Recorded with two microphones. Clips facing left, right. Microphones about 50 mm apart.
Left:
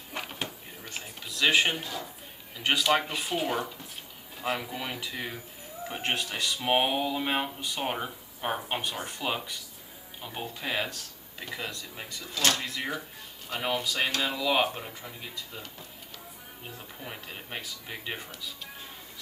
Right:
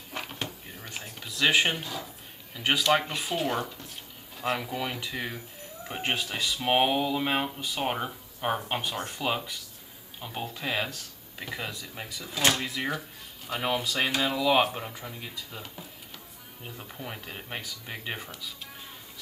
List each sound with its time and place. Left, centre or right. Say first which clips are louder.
0.1 s a sound: even; centre
2.5 s speech: right 1 dB; centre
12.4 s speech: right 2 dB; centre
12.6 s speech: right 2 dB; centre